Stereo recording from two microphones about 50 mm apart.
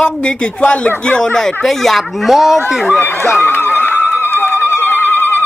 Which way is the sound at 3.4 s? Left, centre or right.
Left.